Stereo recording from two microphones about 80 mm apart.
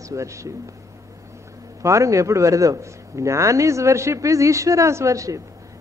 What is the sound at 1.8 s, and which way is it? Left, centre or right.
A man's voice, right.